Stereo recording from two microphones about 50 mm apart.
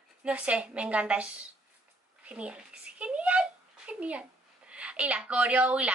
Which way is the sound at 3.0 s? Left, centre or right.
Right.